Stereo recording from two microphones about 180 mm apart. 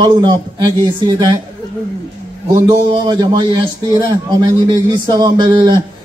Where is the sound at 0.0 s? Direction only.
25° right (ahead or behind).